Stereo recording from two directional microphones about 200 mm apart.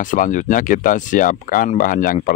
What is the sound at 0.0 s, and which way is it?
Speech, 40° left (ahead or behind).